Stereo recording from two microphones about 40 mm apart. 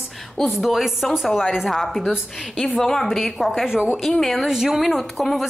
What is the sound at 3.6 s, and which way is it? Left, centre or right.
Speech, centre.